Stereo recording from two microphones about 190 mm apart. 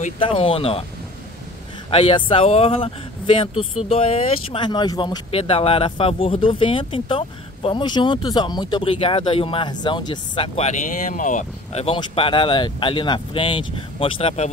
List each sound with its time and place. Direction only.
0.0 s speech: 30° left (ahead or behind)
1.9 s speech: 25° left (ahead or behind)